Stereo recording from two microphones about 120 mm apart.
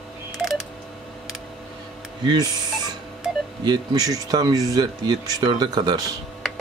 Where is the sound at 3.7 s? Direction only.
30° right (ahead or behind).